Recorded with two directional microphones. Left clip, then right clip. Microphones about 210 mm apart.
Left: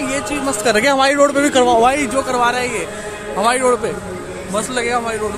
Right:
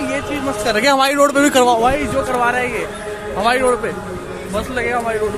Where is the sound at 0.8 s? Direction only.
Centre (ahead or behind).